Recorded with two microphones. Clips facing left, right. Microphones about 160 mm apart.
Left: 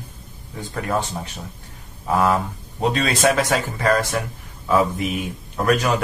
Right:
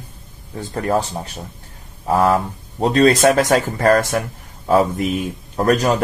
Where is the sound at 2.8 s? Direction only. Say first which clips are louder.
Right 6 dB; 40° right (ahead or behind).